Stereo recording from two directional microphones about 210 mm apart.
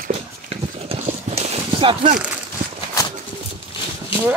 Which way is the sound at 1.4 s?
25° right (ahead or behind).